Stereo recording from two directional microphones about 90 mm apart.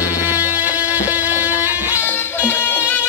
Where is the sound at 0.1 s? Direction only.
40° left (ahead or behind).